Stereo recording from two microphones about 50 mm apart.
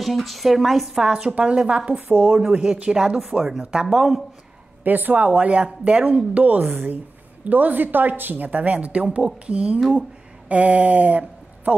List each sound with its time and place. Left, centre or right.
0.0 s speech: centre
1.0 s a woman's voice: centre
2.0 s a woman's voice: right; by 4.2 s centre
4.8 s a woman's voice: right